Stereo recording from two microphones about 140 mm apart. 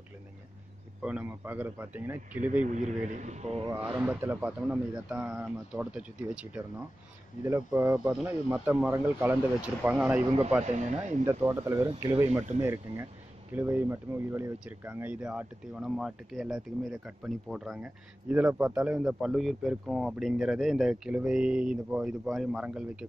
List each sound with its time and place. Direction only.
1.0 s speech: 10° right (ahead or behind)
2.6 s a man's voice: 60° right (ahead or behind)
4.0 s speech: 15° right (ahead or behind)
10.6 s speech: 55° right (ahead or behind)
11.2 s speech: 20° right (ahead or behind)